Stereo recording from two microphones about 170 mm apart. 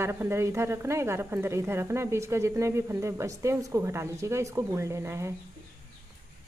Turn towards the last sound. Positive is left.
turn(degrees=-15)  # may be behind; listen again after turning